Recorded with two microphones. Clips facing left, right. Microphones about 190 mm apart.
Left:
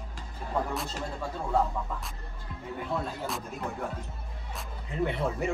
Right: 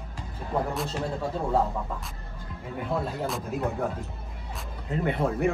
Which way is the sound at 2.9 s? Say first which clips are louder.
Right 4 dB; centre (ahead or behind).